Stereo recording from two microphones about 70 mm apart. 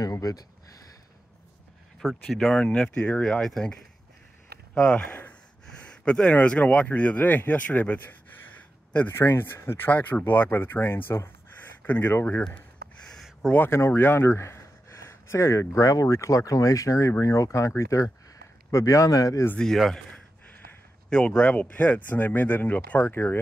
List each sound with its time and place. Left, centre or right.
0.0 s speech: left
2.0 s speech: centre
4.8 s speech: centre
5.8 s a sound: centre
6.3 s speech: left
9.1 s speech: left
13.1 s a sound: centre
13.7 s speech: left
15.0 s a sound: left
15.7 s speech: left
21.1 s speech: centre; by 23.4 s left